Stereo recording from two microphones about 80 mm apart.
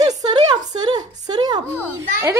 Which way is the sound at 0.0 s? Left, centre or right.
Right.